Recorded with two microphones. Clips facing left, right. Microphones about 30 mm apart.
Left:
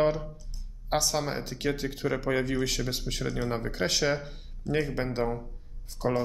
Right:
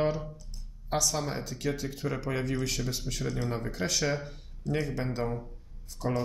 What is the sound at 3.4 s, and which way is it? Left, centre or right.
A man's voice, left.